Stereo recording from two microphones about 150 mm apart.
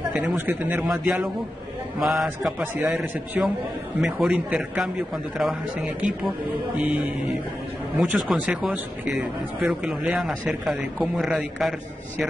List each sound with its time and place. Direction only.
0.1 s a man's voice: 10° right (ahead or behind)
8.0 s a man's voice: centre (ahead or behind)